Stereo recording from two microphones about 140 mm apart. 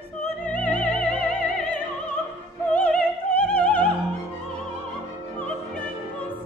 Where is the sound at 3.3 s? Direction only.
10° left (ahead or behind).